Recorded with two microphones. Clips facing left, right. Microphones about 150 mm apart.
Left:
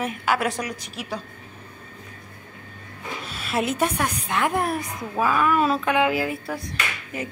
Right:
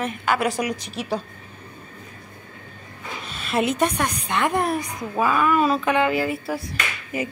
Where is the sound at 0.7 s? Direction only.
25° right (ahead or behind).